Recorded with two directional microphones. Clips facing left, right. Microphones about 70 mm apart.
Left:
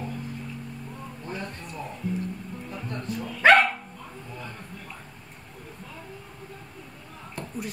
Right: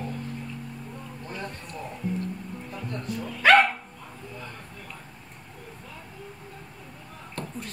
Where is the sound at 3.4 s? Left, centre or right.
Left.